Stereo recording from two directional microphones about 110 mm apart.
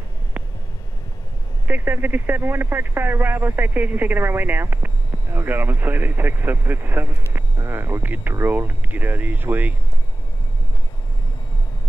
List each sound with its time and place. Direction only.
1.7 s speech: 15° right (ahead or behind)